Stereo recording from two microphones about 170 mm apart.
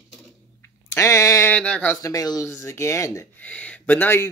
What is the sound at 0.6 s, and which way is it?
Speech, 15° left (ahead or behind).